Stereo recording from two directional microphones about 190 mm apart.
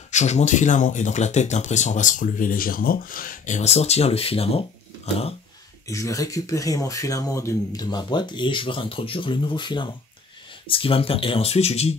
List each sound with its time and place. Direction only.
0.1 s speech: 35° left (ahead or behind)
5.9 s speech: 15° left (ahead or behind); by 11.9 s 35° left (ahead or behind)